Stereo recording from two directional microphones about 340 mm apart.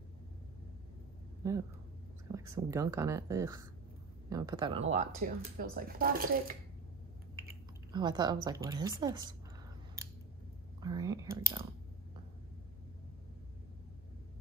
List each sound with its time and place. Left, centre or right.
2.3 s speech: centre; by 6.5 s right
7.4 s speech: centre
10.8 s speech: centre